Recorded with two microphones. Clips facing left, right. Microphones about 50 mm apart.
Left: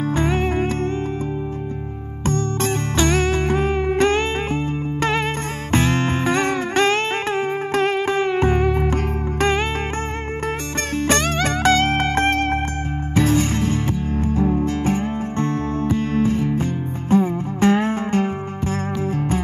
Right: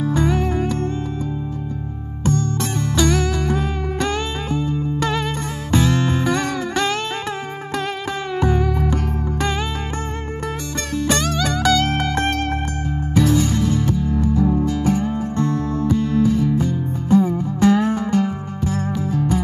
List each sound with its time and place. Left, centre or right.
0.0 s music: left
3.0 s music: left
11.0 s music: left